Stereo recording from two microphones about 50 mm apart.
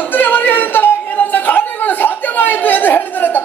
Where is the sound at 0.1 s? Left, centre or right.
Left.